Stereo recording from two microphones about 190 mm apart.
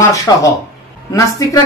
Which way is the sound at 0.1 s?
15° left (ahead or behind).